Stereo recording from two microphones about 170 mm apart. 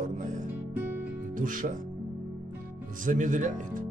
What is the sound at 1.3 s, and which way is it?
Speech, 50° right (ahead or behind).